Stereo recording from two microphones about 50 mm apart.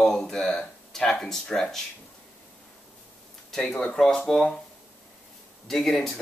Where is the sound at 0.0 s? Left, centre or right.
Centre.